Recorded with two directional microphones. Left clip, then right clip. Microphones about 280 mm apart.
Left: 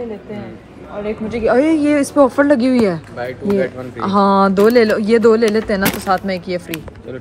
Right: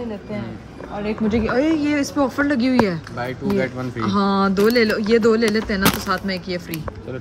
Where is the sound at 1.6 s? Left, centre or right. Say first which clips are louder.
Left 5 dB; centre.